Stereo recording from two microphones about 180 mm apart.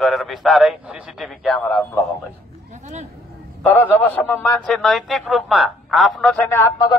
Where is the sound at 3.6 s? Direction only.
10° left (ahead or behind).